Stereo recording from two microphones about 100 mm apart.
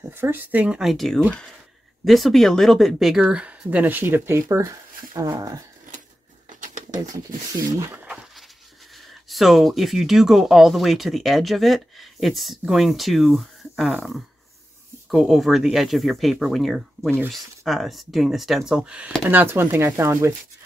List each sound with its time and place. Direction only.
0.1 s speech: 20° right (ahead or behind)
0.7 s speech: centre (ahead or behind); by 5.6 s 40° right (ahead or behind)
7.9 s a sound: 15° right (ahead or behind)
8.9 s speech: centre (ahead or behind); by 20.3 s 30° right (ahead or behind)